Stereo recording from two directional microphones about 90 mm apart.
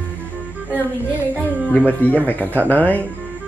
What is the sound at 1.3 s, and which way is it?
A woman's voice, 20° left (ahead or behind).